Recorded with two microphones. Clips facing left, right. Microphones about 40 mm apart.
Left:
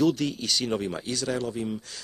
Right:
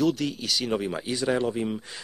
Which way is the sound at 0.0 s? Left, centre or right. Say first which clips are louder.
Left 1 dB; centre.